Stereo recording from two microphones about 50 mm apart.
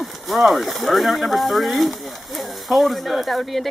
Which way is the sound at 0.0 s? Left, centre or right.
Centre.